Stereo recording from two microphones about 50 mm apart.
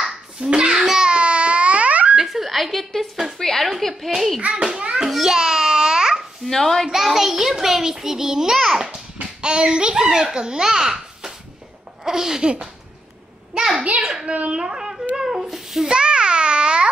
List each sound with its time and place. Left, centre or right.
0.0 s babbling: centre
2.1 s a sound: centre
3.3 s a child's voice: centre
4.4 s a child's voice: right
4.9 s babbling: centre
6.4 s a child's voice: centre
6.9 s a child's voice: centre
8.8 s a child's voice: centre
15.1 s a sound: centre
15.9 s babbling: centre